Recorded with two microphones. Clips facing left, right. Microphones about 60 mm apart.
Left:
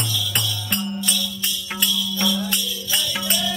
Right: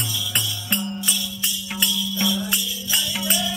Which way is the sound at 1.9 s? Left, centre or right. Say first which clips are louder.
Left 1 dB; centre.